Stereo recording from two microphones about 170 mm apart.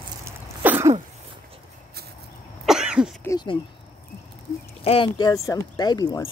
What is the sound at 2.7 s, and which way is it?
Cough, 5° right (ahead or behind).